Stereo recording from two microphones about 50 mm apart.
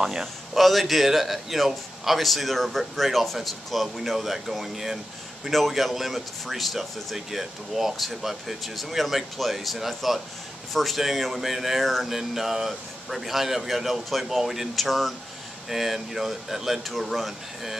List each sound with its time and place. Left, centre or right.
0.0 s speech: centre